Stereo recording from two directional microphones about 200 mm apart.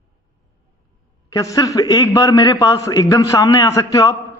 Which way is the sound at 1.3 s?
15° left (ahead or behind).